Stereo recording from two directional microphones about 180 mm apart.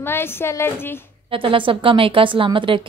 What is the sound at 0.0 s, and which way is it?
A woman's voice, 10° left (ahead or behind).